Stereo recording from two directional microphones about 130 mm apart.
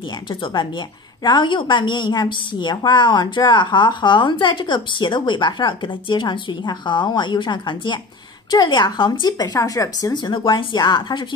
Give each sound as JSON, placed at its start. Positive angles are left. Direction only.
{"t": 0.3, "sound": "a woman's voice", "side_deg": 35}
{"t": 10.1, "sound": "a woman's voice", "side_deg": 35}